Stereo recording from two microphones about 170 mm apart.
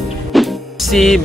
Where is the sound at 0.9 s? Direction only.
Centre (ahead or behind).